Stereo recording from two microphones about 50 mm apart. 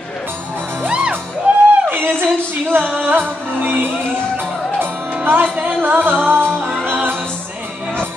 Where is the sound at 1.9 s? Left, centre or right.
Right.